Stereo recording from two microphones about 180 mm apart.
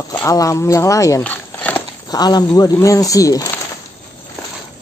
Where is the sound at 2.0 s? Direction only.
20° left (ahead or behind).